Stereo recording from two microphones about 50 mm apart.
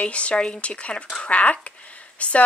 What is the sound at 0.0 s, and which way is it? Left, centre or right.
A woman's voice, left.